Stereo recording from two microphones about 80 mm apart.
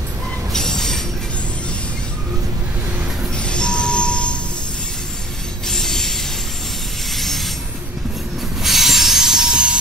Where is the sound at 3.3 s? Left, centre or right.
Centre.